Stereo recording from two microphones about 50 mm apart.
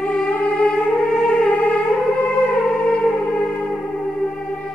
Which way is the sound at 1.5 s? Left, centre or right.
Left.